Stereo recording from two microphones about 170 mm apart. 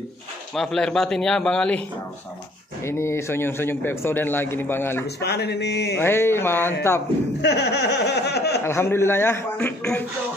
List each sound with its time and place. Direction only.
0.6 s a man's voice: 5° left (ahead or behind)
2.8 s a man's voice: 15° left (ahead or behind)
5.2 s speech: 75° left (ahead or behind)
5.9 s a man's voice: 15° left (ahead or behind)
7.4 s laughter: 80° left
8.6 s a man's voice: 15° left (ahead or behind)